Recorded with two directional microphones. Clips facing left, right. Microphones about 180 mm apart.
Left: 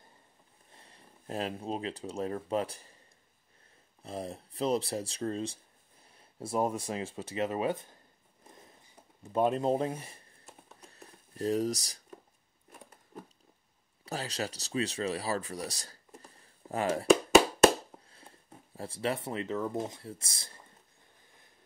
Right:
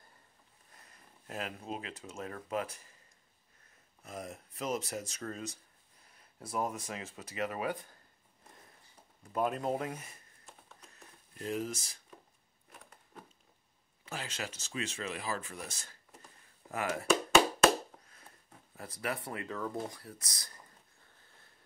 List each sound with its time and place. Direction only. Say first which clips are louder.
0.7 s speech: left 4 dB; 30° left (ahead or behind)
4.0 s speech: left 5 dB; 30° left (ahead or behind)
8.5 s a sound: left 4 dB; 20° left (ahead or behind)
9.2 s speech: left 5 dB; 25° left (ahead or behind)
10.8 s a sound: left 5 dB; 35° left (ahead or behind)
14.0 s speech: left 6 dB; 35° left (ahead or behind)